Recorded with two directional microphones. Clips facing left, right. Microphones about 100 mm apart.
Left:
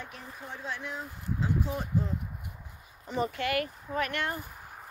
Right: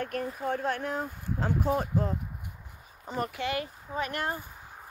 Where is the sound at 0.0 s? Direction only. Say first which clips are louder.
Right 12 dB; 55° right (ahead or behind).